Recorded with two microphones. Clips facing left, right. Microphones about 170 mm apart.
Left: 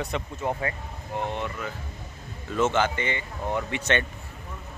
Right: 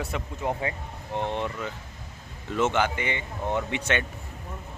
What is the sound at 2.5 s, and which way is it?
Speech, 15° right (ahead or behind).